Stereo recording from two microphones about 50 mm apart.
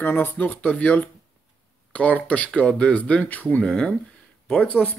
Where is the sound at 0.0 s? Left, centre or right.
Left.